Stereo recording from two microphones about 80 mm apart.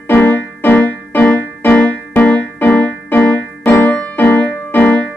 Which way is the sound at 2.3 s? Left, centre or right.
Left.